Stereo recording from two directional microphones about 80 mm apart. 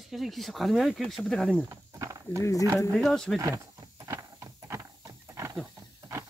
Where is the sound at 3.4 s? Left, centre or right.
Right.